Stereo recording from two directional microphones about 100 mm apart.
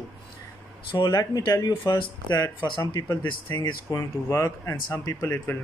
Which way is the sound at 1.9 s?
50° left (ahead or behind).